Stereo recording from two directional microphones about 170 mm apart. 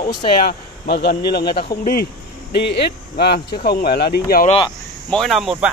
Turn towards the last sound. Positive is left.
turn(degrees=0)  # may be behind; listen again after turning